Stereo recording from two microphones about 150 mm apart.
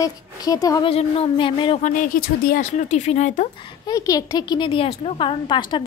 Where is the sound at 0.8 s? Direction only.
40° left (ahead or behind).